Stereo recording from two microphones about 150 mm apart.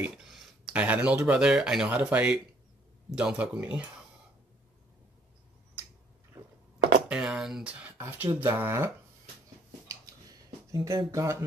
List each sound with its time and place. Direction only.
0.0 s speech: 5° right (ahead or behind)
7.1 s speech: 5° right (ahead or behind)
9.8 s a sound: 25° right (ahead or behind)